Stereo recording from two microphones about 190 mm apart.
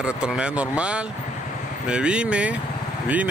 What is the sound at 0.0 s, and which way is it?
Speech, 5° right (ahead or behind).